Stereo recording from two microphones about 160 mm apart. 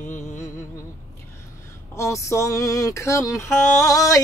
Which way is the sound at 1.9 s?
20° left (ahead or behind).